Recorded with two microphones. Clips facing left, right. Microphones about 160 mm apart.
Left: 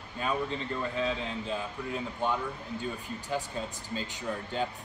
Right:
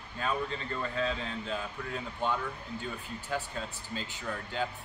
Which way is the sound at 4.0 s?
20° left (ahead or behind).